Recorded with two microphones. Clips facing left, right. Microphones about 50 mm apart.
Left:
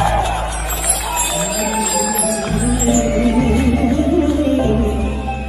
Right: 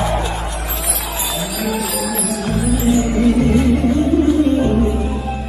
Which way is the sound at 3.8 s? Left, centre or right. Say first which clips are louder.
Even; left.